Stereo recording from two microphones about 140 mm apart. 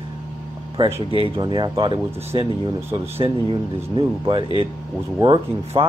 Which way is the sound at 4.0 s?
40° right (ahead or behind).